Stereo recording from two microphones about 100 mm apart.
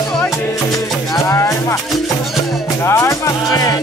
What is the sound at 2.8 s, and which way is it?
Music, 30° left (ahead or behind).